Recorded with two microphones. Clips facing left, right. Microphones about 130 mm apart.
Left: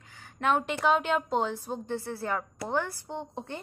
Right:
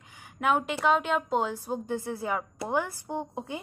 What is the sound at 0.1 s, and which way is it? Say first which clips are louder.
A woman's voice: right 1 dB; 10° right (ahead or behind).